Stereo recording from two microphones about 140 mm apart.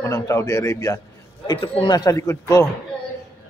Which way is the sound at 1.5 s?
35° left (ahead or behind).